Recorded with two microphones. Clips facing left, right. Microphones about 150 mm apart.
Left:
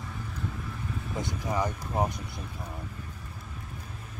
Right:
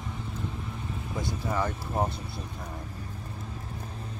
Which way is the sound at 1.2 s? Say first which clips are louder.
Right 1 dB; 15° left (ahead or behind).